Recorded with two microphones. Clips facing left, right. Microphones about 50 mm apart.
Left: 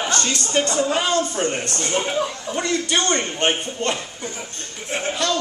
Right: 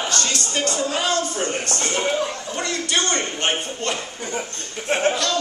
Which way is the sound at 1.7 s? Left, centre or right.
Right.